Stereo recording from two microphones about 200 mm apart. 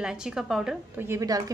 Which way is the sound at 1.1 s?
15° right (ahead or behind).